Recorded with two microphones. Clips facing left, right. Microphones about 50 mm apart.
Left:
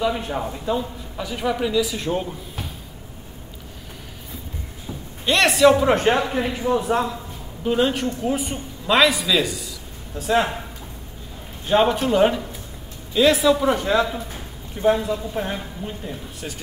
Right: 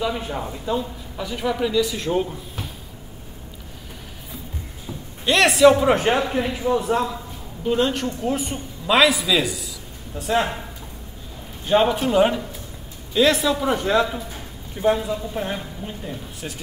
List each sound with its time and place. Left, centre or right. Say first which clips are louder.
0.0 s a man's voice: left 2 dB; centre
5.2 s a man's voice: right 1 dB; centre
11.6 s a man's voice: even; centre